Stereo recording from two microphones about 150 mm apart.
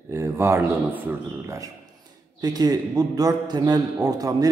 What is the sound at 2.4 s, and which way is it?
A man's voice, 25° right (ahead or behind).